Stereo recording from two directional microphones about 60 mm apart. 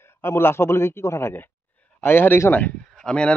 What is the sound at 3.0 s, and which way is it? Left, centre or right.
Speech, centre.